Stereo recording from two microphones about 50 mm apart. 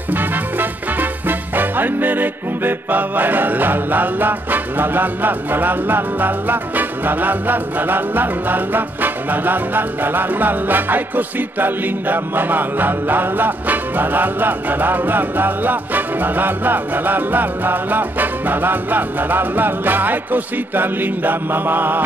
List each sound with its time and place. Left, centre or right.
0.1 s music: right